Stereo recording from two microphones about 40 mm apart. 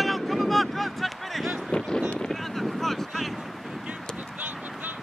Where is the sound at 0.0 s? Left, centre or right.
Centre.